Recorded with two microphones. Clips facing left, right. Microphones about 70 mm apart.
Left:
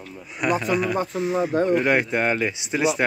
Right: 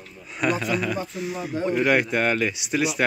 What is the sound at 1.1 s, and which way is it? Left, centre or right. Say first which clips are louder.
Speech: left 7 dB; left.